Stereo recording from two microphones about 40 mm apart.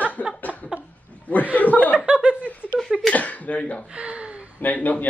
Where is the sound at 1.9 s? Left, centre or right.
Right.